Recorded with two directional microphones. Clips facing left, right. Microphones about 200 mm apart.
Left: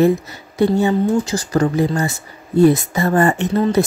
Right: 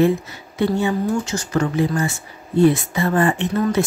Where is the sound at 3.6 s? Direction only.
30° left (ahead or behind).